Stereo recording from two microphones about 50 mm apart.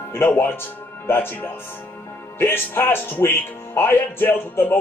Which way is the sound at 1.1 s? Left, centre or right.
Left.